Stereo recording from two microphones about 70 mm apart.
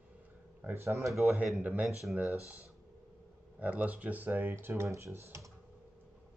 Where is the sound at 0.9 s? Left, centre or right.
Right.